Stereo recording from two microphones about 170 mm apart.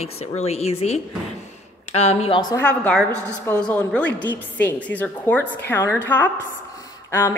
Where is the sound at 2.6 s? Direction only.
5° left (ahead or behind).